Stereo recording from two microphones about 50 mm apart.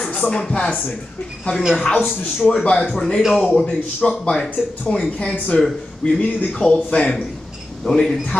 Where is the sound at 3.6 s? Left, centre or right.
Left.